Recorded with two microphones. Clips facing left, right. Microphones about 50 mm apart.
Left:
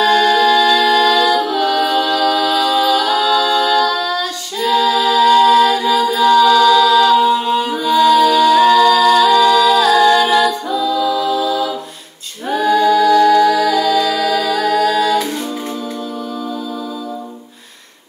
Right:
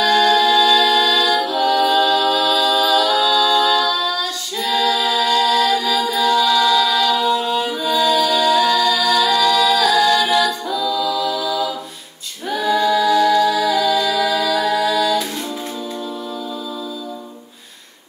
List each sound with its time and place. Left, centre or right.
0.2 s music: left
6.1 s a capella: left
7.7 s music: left
12.7 s music: left
14.8 s singing: left